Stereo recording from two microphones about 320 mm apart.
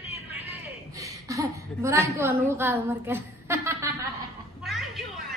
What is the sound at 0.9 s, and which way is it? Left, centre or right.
Chuckle, centre.